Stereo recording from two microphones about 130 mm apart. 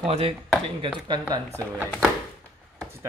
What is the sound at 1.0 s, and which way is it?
Speech, 35° right (ahead or behind).